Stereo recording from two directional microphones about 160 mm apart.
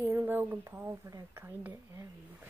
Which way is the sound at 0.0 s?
15° right (ahead or behind).